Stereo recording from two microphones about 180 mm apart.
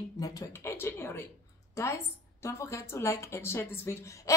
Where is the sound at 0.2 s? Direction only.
20° left (ahead or behind).